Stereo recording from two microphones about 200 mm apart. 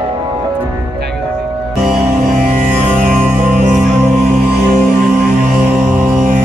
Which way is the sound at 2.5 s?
40° right (ahead or behind).